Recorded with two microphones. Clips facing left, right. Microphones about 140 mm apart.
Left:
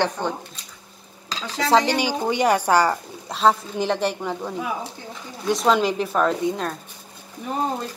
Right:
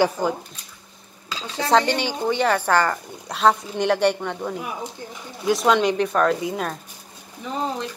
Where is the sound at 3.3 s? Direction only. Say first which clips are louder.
Even; centre (ahead or behind).